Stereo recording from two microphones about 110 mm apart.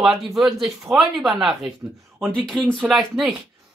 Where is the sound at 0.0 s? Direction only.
Centre (ahead or behind).